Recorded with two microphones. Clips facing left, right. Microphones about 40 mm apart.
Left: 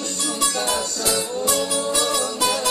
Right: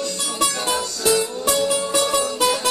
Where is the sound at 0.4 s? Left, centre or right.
Centre.